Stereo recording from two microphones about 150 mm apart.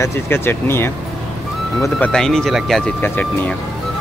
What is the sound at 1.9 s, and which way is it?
Speech, 5° left (ahead or behind).